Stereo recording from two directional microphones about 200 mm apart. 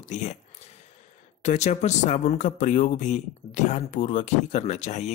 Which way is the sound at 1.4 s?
35° left (ahead or behind).